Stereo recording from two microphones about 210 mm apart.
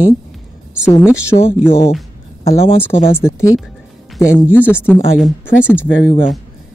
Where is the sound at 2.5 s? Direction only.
25° left (ahead or behind).